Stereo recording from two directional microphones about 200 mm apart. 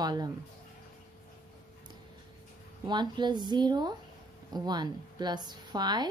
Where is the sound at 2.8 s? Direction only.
20° right (ahead or behind).